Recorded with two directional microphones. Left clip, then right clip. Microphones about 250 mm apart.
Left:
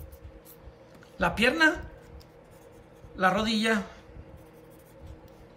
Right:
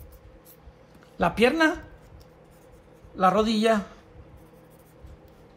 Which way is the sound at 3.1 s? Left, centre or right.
Centre.